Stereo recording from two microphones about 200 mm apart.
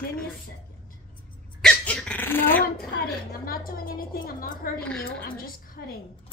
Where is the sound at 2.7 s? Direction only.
50° left (ahead or behind).